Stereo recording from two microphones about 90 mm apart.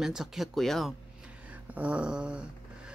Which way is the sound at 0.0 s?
5° right (ahead or behind).